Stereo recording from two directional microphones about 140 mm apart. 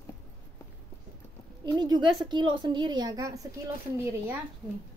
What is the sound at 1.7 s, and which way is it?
A woman's voice, 30° right (ahead or behind).